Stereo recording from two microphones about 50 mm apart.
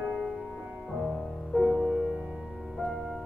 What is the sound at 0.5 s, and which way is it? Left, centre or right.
Music, centre.